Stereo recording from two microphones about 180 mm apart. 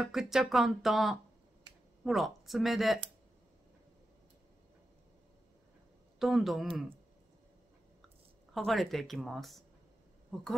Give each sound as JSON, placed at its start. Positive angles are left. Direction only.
{"t": 0.0, "sound": "speech", "side_deg": 0}
{"t": 6.1, "sound": "speech", "side_deg": 0}
{"t": 8.5, "sound": "speech", "side_deg": 0}